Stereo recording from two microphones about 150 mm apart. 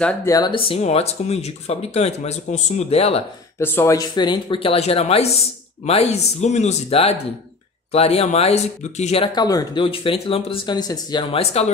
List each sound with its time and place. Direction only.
0.2 s speech: 25° left (ahead or behind); by 3.3 s 40° left (ahead or behind)
3.5 s speech: 15° left (ahead or behind); by 9.3 s 45° left (ahead or behind)
9.3 s speech: 25° left (ahead or behind)
9.8 s speech: 35° left (ahead or behind)
11.3 s speech: 45° left (ahead or behind)